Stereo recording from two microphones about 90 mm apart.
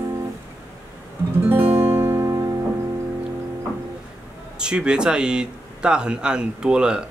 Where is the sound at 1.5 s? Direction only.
25° right (ahead or behind).